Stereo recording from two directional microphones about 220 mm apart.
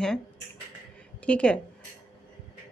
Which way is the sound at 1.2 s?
5° left (ahead or behind).